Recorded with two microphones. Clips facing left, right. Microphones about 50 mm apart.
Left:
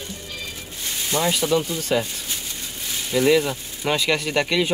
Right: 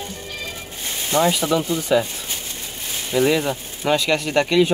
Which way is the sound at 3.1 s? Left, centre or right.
Right.